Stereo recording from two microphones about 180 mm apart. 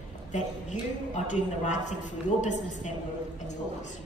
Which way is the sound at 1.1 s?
40° left (ahead or behind).